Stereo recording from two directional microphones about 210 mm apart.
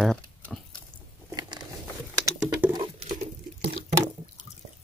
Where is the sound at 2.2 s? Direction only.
15° right (ahead or behind).